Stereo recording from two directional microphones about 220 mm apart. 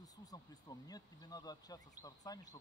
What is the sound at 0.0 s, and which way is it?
Speech, 15° left (ahead or behind).